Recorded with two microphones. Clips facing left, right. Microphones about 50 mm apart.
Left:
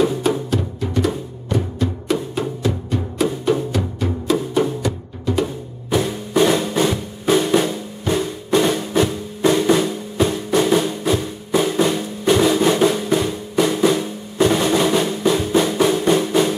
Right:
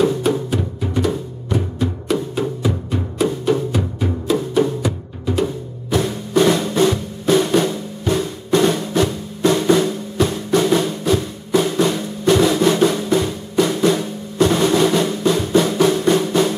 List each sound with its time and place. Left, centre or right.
0.0 s music: centre
0.6 s music: centre
2.6 s music: centre
3.3 s music: centre
3.7 s music: centre
5.9 s music: centre